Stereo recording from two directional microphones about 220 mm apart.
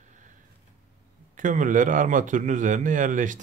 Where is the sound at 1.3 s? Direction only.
35° right (ahead or behind).